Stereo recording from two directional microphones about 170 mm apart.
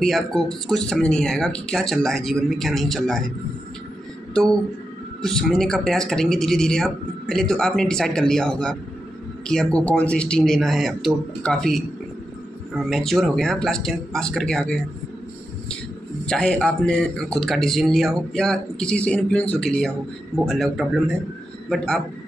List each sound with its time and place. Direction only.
0.0 s speech: centre (ahead or behind)
5.2 s speech: 5° left (ahead or behind)
16.3 s speech: 5° left (ahead or behind)